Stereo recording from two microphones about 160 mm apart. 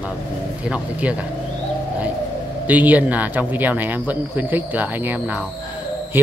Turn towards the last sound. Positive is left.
turn(degrees=-15)  # may be behind; listen again after turning